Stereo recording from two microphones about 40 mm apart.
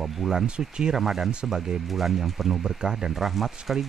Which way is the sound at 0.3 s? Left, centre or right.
Centre.